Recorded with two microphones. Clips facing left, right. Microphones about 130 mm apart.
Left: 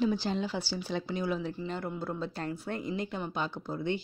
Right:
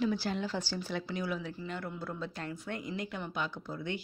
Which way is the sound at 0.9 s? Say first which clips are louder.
Left 4 dB; 25° left (ahead or behind).